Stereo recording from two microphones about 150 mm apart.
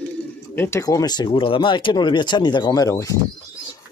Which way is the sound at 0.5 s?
15° left (ahead or behind).